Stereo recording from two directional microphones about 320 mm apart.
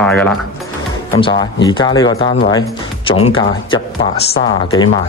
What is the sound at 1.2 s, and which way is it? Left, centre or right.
Speech, centre.